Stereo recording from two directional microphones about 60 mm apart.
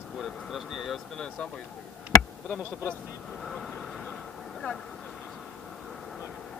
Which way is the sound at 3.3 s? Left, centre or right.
Centre.